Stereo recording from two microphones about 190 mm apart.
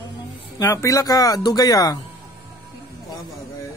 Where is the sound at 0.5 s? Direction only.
15° left (ahead or behind).